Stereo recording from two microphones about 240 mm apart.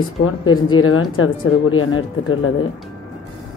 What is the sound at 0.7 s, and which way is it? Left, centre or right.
Speech, left.